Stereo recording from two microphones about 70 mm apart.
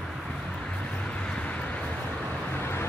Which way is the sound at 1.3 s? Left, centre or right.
Centre.